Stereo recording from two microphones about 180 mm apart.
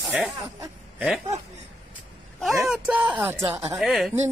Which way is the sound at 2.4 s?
Centre (ahead or behind).